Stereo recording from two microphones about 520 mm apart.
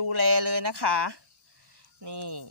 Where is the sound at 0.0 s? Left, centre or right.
Right.